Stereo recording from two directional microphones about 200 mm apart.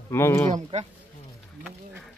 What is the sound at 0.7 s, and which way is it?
Speech, 35° right (ahead or behind).